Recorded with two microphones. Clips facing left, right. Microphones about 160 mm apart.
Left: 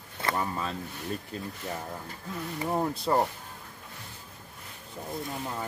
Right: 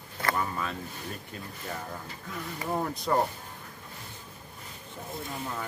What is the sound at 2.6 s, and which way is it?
Speech, 20° left (ahead or behind).